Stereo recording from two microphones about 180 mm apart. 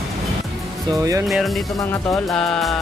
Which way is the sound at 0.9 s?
20° right (ahead or behind).